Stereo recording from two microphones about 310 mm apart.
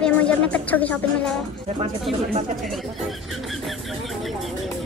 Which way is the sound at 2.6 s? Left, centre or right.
Centre.